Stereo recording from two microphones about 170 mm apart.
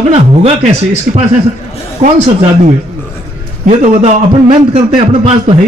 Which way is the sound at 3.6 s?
40° right (ahead or behind).